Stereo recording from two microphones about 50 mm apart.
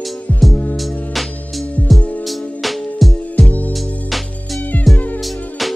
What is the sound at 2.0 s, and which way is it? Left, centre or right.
Music, left.